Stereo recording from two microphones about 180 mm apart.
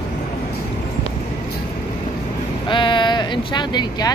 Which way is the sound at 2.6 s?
25° left (ahead or behind).